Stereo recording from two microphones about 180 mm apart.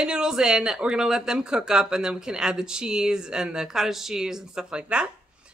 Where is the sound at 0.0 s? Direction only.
5° right (ahead or behind).